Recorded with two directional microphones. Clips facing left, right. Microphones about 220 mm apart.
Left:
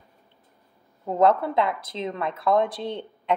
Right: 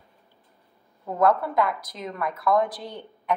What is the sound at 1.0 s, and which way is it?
A woman's voice, 25° left (ahead or behind).